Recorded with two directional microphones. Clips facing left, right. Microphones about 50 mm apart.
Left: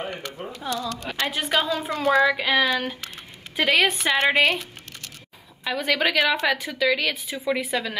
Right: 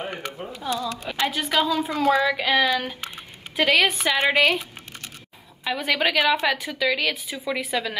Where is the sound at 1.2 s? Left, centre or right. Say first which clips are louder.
Right 1 dB; centre.